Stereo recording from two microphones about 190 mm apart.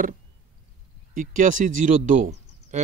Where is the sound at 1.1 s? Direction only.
45° right (ahead or behind).